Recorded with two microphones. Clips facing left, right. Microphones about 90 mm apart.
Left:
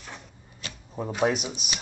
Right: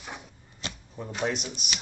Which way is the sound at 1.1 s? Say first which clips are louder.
Left 5 dB; 10° left (ahead or behind).